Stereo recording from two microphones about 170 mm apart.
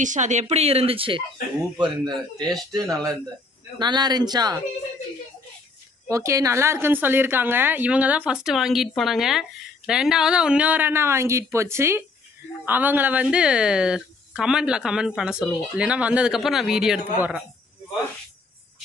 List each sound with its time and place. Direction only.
0.0 s speech: 45° right (ahead or behind); by 4.6 s 25° right (ahead or behind)
6.0 s a woman's voice: 20° right (ahead or behind)